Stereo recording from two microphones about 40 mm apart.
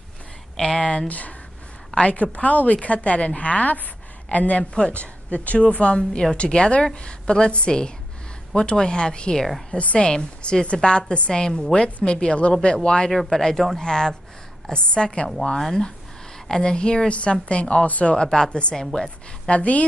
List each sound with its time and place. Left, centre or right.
0.6 s speech: centre
1.0 s a woman's voice: left
4.7 s a woman's voice: left
5.3 s a woman's voice: left
15.6 s a woman's voice: centre
17.1 s a woman's voice: left
18.1 s a woman's voice: centre